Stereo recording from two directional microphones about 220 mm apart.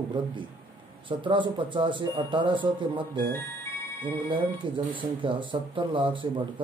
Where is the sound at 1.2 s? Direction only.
20° right (ahead or behind).